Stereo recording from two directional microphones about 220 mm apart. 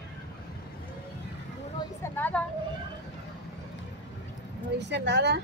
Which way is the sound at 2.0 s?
10° left (ahead or behind).